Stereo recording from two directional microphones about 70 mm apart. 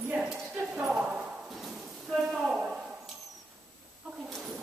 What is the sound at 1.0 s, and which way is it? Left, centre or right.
Clip-clop, centre.